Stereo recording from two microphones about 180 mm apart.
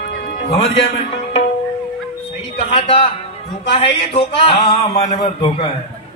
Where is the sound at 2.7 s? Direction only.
30° left (ahead or behind).